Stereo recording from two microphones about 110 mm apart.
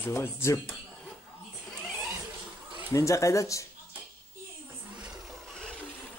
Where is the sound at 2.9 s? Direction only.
30° left (ahead or behind).